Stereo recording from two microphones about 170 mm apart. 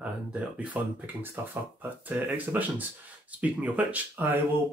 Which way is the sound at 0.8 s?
10° right (ahead or behind).